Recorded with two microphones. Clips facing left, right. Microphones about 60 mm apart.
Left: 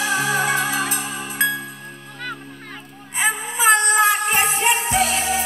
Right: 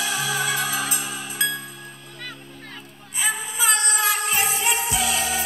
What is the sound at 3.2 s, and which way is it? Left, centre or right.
Music, left.